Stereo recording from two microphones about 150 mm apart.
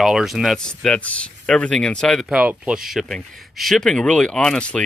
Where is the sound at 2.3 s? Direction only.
10° right (ahead or behind).